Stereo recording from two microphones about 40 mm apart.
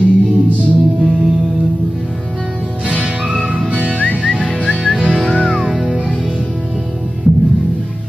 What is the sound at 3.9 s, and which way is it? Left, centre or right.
Whistling, left.